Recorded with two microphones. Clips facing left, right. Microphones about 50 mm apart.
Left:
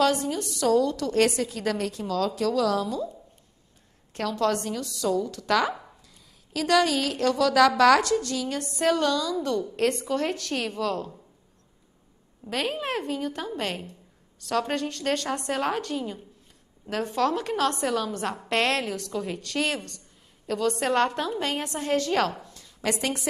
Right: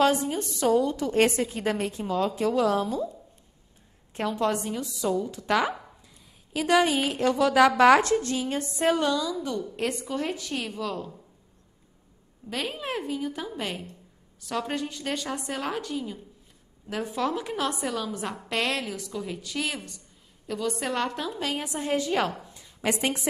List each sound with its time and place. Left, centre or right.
0.0 s a woman's voice: right
4.1 s a woman's voice: right
12.4 s a woman's voice: centre
16.9 s a woman's voice: centre
21.6 s a woman's voice: centre